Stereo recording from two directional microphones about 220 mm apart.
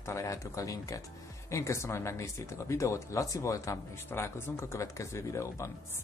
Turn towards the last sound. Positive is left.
turn(degrees=10)  # may be behind; listen again after turning